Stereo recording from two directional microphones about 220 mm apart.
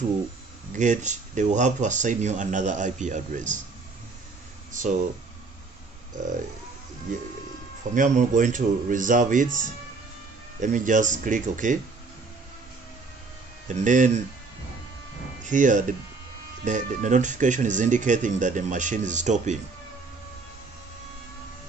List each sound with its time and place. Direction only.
0.7 s speech: 35° right (ahead or behind)
4.7 s speech: 35° right (ahead or behind)
6.2 s speech: 35° right (ahead or behind)
7.9 s speech: 35° right (ahead or behind)
13.7 s speech: 35° right (ahead or behind)
15.4 s speech: 35° right (ahead or behind)